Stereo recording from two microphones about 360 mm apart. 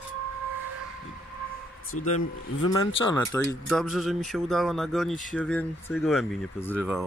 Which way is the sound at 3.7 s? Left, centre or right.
Centre.